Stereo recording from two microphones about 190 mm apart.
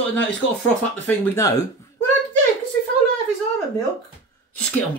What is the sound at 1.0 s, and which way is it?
Speech, 15° left (ahead or behind).